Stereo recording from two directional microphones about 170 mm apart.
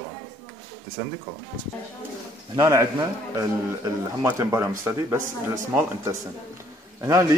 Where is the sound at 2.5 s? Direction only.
15° right (ahead or behind).